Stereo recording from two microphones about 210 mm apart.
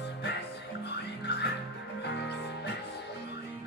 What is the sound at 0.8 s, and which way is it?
Music, 55° left (ahead or behind).